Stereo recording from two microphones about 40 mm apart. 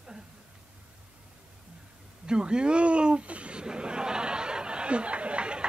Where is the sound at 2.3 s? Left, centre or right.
Right.